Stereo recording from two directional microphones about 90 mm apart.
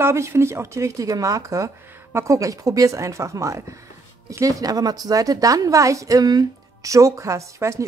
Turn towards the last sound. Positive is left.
turn(degrees=-35)  # may be behind; listen again after turning